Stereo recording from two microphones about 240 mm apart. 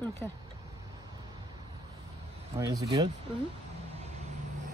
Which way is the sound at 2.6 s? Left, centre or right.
Centre.